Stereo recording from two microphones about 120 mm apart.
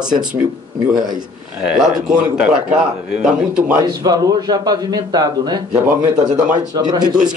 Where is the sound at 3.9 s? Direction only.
30° right (ahead or behind).